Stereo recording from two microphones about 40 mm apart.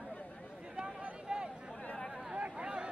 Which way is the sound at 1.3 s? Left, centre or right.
Right.